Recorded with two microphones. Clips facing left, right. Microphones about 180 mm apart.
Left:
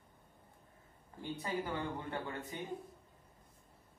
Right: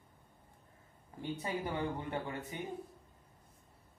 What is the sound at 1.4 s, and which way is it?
Speech, 20° right (ahead or behind).